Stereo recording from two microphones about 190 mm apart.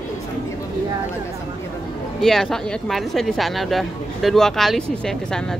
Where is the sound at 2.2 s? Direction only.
Centre (ahead or behind).